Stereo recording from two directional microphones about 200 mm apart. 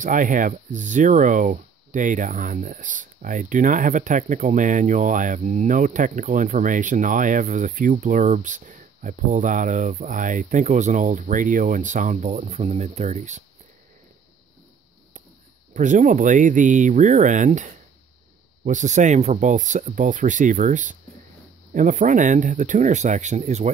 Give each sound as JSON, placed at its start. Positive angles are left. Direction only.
{"t": 0.0, "sound": "speech", "side_deg": -40}
{"t": 15.7, "sound": "speech", "side_deg": -40}